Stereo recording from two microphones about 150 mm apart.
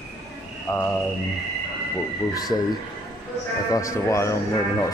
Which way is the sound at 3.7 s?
20° left (ahead or behind).